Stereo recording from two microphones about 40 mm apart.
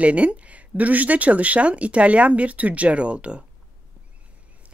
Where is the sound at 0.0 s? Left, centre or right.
Right.